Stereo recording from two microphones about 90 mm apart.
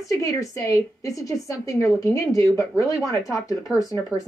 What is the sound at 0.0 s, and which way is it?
A woman's voice, 40° left (ahead or behind).